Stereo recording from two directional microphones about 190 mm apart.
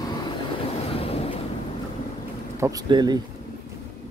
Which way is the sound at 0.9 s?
30° left (ahead or behind).